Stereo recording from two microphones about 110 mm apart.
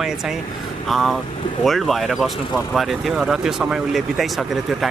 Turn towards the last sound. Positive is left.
turn(degrees=0)  # may be behind; listen again after turning